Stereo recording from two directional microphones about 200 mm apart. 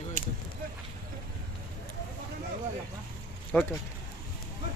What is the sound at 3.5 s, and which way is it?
Speech, 5° left (ahead or behind).